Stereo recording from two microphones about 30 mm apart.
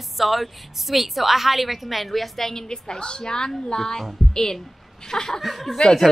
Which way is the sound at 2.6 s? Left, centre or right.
Left.